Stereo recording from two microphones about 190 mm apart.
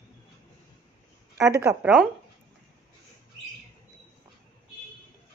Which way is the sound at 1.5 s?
15° right (ahead or behind).